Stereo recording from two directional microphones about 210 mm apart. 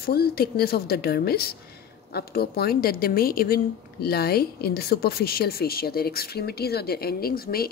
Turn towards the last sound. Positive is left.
turn(degrees=45)  # may be behind; listen again after turning